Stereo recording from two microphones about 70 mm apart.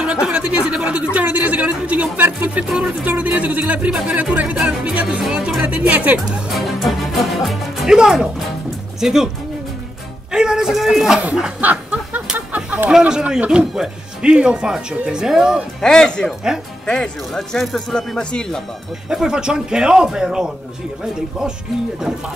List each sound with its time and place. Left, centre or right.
0.0 s speech: centre
2.7 s speech: centre
5.6 s speech: right
6.1 s speech: centre
10.3 s speech: centre
11.6 s a sound: right
13.0 s speech: centre
15.8 s speech: centre
19.0 s speech: centre